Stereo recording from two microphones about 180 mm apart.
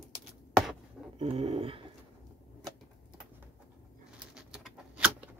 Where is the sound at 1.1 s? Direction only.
35° right (ahead or behind).